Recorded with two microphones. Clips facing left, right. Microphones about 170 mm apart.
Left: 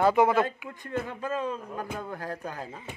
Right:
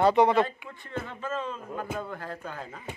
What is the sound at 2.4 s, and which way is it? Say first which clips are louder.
Speech: left 2 dB; 40° left (ahead or behind).